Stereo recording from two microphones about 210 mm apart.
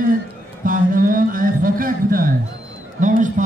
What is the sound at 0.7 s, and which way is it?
A man's voice, 40° right (ahead or behind).